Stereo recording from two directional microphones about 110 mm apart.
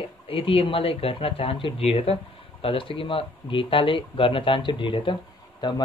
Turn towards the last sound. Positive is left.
turn(degrees=45)  # may be behind; listen again after turning